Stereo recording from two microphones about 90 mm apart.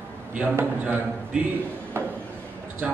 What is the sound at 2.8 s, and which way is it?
Speech, 10° right (ahead or behind).